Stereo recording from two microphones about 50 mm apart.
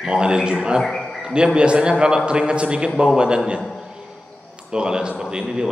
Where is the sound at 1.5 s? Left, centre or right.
Centre.